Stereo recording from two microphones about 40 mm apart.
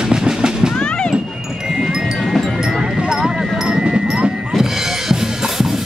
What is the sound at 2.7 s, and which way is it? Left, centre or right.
Clip-clop, centre.